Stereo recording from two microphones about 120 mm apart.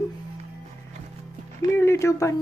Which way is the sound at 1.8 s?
25° left (ahead or behind).